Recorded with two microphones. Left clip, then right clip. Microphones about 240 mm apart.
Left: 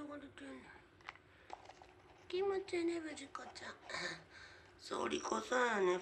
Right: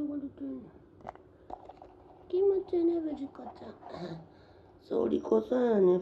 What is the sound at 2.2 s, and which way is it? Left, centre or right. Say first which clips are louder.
Speech: right 11 dB; centre.